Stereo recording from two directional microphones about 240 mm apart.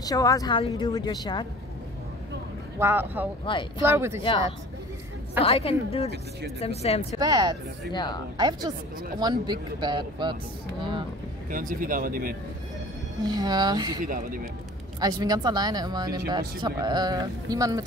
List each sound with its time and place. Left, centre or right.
0.0 s a woman's voice: centre
2.8 s speech: centre
3.5 s a woman's voice: left
3.8 s speech: centre
5.4 s a woman's voice: left
7.2 s speech: centre
7.9 s a woman's voice: centre
8.4 s speech: centre
11.5 s speech: right
13.2 s speech: centre
14.0 s speech: right
15.0 s speech: centre